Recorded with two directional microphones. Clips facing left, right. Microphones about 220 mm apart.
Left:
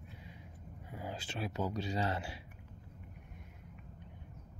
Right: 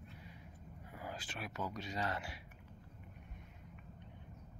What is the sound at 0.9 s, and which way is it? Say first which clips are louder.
Speech: left 4 dB; 25° left (ahead or behind).